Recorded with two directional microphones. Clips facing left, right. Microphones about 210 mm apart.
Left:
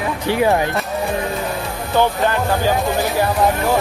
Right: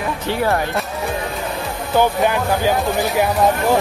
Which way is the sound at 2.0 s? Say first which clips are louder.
Even; 15° right (ahead or behind).